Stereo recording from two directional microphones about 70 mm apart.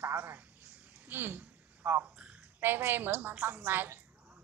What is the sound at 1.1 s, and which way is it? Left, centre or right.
A woman's voice, right.